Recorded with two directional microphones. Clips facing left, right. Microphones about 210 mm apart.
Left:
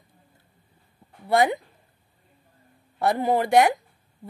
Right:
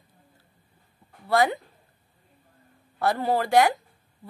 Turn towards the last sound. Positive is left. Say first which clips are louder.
# left 2 dB
turn(degrees=20)  # may be behind; listen again after turning